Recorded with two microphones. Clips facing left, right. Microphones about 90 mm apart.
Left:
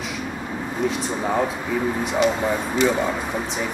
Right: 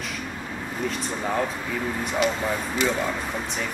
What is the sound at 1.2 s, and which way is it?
Speech, 10° left (ahead or behind).